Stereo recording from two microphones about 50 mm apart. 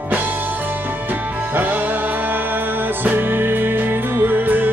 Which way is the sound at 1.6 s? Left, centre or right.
Right.